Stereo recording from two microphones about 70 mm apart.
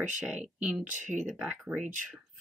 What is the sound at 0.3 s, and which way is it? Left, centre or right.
Speech, centre.